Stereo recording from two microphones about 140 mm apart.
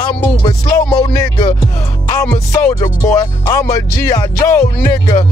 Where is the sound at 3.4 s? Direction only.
25° left (ahead or behind).